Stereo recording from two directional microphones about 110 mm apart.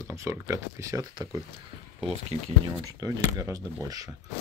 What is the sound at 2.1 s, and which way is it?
Speech, 65° right (ahead or behind).